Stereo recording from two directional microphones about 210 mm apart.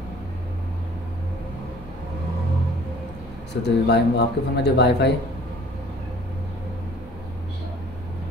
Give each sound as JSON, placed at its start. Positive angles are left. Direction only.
{"t": 3.6, "sound": "speech", "side_deg": 50}